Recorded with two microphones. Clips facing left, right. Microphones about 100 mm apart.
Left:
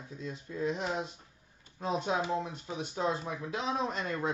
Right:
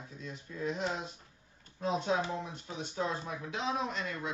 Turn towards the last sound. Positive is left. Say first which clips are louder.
# left 3 dB
turn(degrees=35)  # may be behind; listen again after turning